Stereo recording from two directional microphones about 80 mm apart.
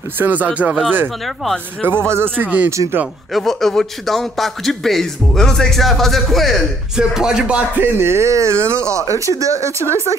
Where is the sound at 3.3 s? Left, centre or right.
Centre.